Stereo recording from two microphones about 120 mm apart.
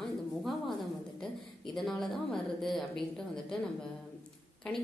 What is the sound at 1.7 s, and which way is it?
A woman's voice, 5° left (ahead or behind).